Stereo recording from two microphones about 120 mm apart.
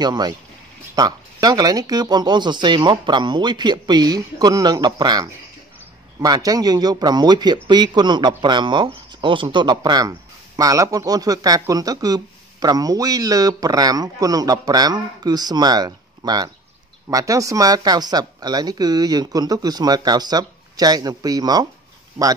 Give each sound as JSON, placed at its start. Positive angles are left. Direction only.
{"t": 0.0, "sound": "speech", "side_deg": -35}